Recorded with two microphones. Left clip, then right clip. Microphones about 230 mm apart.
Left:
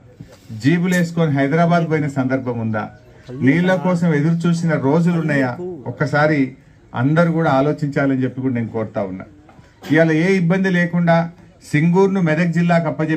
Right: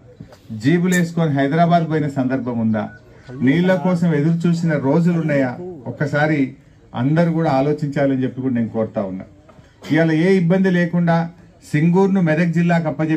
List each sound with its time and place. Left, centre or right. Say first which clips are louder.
0.6 s a man's voice: even; left